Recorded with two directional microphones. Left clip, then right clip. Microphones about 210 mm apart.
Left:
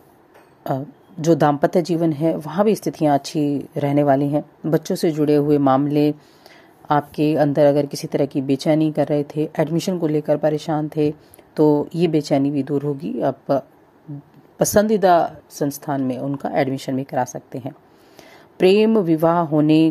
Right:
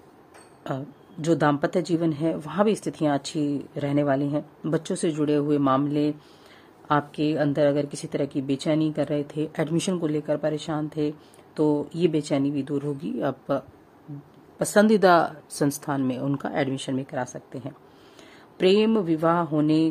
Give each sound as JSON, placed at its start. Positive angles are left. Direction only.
{"t": 0.7, "sound": "speech", "side_deg": 15}
{"t": 14.9, "sound": "speech", "side_deg": 0}